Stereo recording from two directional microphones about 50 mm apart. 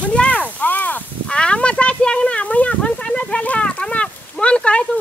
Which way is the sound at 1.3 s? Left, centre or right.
Centre.